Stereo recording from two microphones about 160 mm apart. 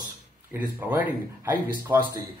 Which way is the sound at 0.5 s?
10° right (ahead or behind).